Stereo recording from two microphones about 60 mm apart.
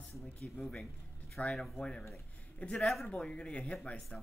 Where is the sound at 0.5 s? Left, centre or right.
Centre.